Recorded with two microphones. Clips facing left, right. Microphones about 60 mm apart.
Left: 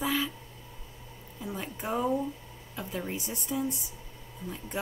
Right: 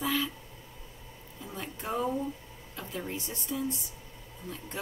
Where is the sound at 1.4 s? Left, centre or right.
Centre.